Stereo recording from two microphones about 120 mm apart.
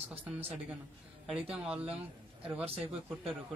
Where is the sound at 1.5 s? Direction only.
10° right (ahead or behind).